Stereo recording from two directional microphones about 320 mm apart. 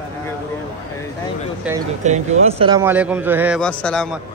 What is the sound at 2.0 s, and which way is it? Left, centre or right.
A man's voice, right.